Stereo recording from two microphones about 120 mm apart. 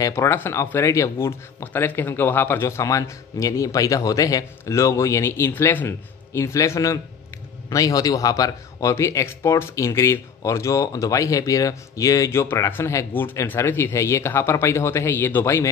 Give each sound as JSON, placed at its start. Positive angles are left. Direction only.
{"t": 0.0, "sound": "a man's voice", "side_deg": 25}